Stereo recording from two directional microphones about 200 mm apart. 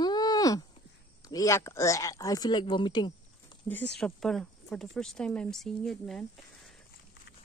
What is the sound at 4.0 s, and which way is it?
Speech, centre (ahead or behind).